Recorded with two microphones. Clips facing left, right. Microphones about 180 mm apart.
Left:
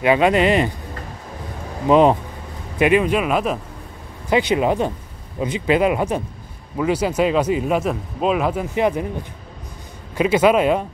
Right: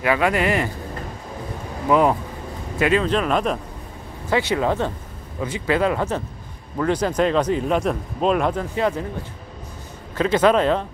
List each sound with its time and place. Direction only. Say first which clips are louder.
0.0 s speech: left 4 dB; 20° left (ahead or behind)
1.9 s speech: left 4 dB; 20° left (ahead or behind); by 3.5 s 5° left (ahead or behind)
4.3 s speech: left 3 dB; 15° left (ahead or behind)
8.7 s speech: left 5 dB; 15° left (ahead or behind)
10.1 s speech: left 2 dB; 10° left (ahead or behind)